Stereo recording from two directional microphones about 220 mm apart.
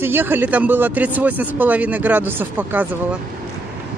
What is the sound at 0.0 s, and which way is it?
Speech, 10° right (ahead or behind).